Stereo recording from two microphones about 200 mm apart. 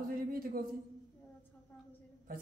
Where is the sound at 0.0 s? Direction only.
45° right (ahead or behind).